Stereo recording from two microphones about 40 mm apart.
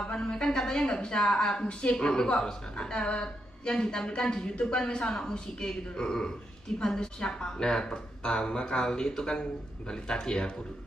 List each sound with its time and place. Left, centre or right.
0.0 s a woman's voice: left
1.6 s a woman's voice: left